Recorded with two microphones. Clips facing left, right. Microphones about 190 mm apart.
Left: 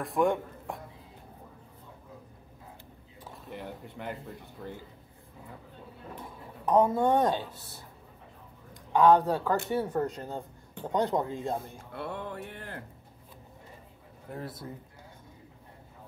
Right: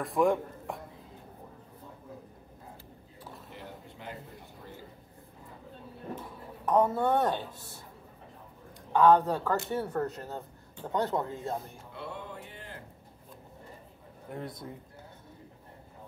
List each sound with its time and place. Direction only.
0.0 s speech: centre (ahead or behind)
3.5 s a sound: 60° left (ahead or behind)
6.7 s speech: 10° left (ahead or behind)
8.9 s speech: 10° left (ahead or behind)
11.9 s music: 55° left (ahead or behind)
14.3 s a man's voice: 5° left (ahead or behind)